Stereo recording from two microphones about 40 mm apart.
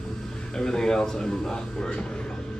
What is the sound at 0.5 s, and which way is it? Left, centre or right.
Speech, centre.